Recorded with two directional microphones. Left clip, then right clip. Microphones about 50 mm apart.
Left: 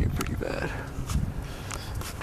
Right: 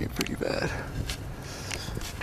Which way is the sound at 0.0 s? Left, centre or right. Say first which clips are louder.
Right 2 dB; right.